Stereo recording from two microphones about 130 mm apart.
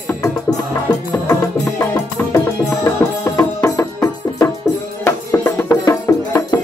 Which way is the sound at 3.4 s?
25° left (ahead or behind).